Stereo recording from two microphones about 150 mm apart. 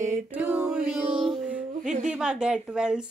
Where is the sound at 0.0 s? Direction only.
10° right (ahead or behind).